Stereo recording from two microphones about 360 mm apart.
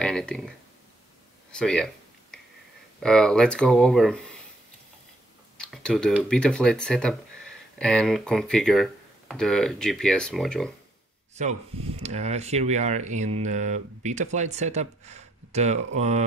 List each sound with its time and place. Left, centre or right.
0.0 s a sound: centre
1.5 s speech: centre
3.0 s speech: centre
5.6 s speech: centre
11.3 s speech: centre